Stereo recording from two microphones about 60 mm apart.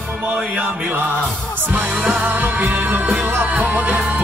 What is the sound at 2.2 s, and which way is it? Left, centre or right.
Music, right.